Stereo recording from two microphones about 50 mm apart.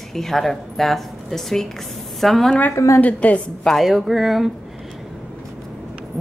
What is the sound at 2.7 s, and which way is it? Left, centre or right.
Speech, left.